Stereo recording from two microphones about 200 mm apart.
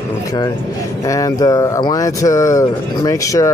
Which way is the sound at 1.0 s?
15° left (ahead or behind).